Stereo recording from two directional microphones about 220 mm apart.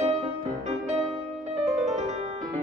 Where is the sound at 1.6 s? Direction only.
30° right (ahead or behind).